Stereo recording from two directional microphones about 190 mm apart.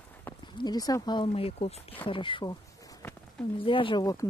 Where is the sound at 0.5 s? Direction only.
20° left (ahead or behind).